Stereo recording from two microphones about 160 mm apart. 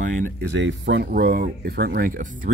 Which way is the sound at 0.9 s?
85° right.